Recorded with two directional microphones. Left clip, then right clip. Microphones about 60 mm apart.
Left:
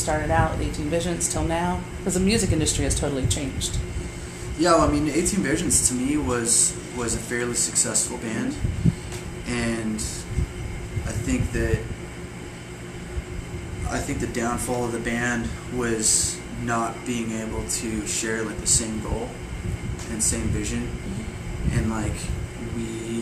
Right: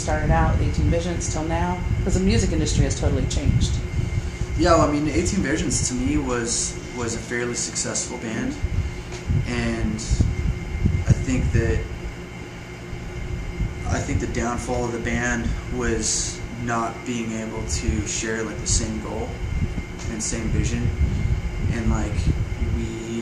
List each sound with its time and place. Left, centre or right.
0.3 s speech: left
4.6 s speech: centre
11.1 s speech: centre
13.8 s speech: centre
20.2 s speech: centre